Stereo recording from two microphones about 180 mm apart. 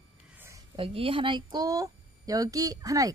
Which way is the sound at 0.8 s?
30° right (ahead or behind).